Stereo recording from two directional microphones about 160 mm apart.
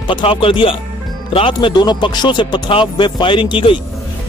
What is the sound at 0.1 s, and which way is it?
A man's voice, 35° left (ahead or behind).